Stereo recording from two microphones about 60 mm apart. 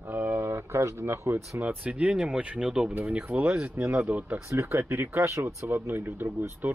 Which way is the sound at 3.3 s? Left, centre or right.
Right.